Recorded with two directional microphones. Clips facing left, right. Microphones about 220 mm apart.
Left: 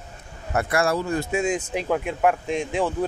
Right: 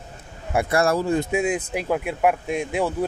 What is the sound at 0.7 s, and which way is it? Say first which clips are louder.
Speech: right 2 dB; 40° right (ahead or behind).